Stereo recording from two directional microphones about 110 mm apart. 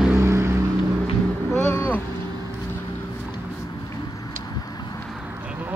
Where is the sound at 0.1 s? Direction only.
25° right (ahead or behind).